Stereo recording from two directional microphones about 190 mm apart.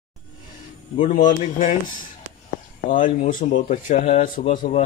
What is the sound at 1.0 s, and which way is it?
Speech, 45° left (ahead or behind).